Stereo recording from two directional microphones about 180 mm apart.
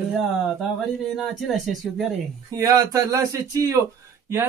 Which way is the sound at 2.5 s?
20° right (ahead or behind).